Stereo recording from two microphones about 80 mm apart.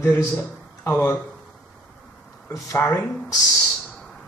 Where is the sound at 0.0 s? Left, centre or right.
Left.